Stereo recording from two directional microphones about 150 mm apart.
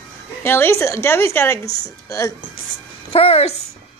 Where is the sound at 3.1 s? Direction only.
40° left (ahead or behind).